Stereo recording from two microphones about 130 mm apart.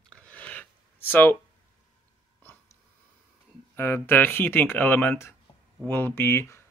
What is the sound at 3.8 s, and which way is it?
Speech, 15° left (ahead or behind).